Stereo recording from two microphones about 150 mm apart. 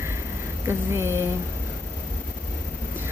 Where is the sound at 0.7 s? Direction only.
15° right (ahead or behind).